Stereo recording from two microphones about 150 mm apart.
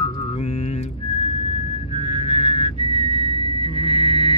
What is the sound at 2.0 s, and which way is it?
Music, 45° left (ahead or behind).